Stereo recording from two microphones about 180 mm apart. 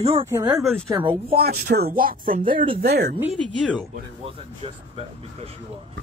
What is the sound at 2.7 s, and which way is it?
Speech, 60° right (ahead or behind).